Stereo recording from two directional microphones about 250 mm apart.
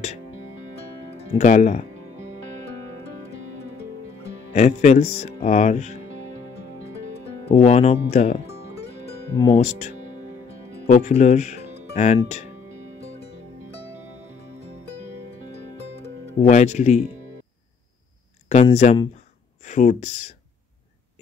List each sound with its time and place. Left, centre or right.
1.1 s speech: left
4.6 s speech: left
7.4 s speech: left
9.4 s speech: left
16.0 s speech: left
18.5 s speech: left